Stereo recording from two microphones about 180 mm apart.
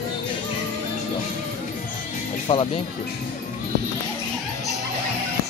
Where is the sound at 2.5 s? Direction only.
30° left (ahead or behind).